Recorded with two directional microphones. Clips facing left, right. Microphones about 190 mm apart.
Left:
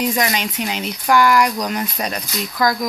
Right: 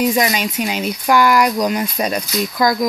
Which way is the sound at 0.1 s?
15° right (ahead or behind).